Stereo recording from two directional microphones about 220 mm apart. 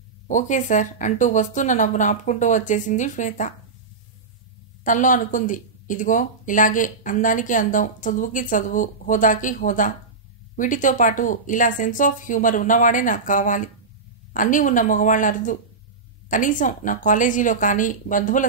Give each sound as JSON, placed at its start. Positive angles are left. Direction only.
{"t": 0.3, "sound": "speech", "side_deg": 35}
{"t": 4.8, "sound": "speech", "side_deg": 35}